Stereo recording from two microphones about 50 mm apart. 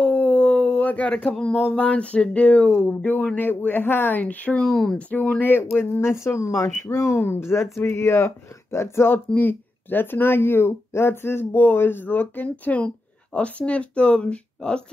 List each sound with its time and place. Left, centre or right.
0.0 s a sound: left
0.8 s speech: left
1.7 s a sound: left
3.3 s speech: left
4.6 s speech: centre
4.9 s speech: left
9.1 s speech: left
11.5 s speech: left
12.8 s speech: left